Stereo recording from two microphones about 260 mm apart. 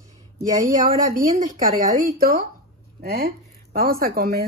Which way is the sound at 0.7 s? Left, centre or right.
Right.